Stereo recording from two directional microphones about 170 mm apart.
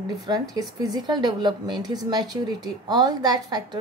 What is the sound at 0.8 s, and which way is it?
A woman's voice, 25° right (ahead or behind).